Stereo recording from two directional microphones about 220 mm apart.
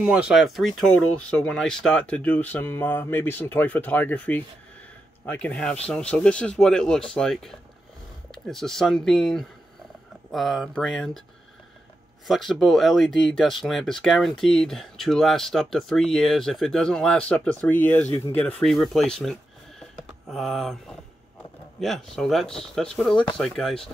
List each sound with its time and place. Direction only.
0.0 s speech: 5° right (ahead or behind)
12.3 s speech: centre (ahead or behind)
21.7 s speech: centre (ahead or behind)